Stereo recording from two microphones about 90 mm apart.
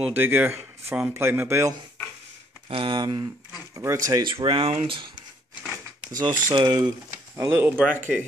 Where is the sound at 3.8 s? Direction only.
40° right (ahead or behind).